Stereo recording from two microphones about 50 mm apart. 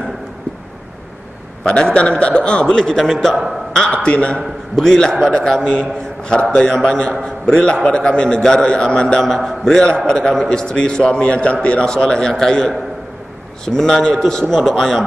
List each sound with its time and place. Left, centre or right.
1.6 s a man's voice: centre
3.7 s a man's voice: centre
13.7 s a man's voice: centre